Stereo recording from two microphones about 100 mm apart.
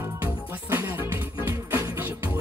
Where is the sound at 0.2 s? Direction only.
20° right (ahead or behind).